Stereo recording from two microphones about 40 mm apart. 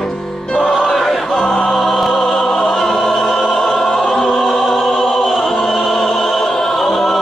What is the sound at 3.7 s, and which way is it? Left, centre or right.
Choir, centre.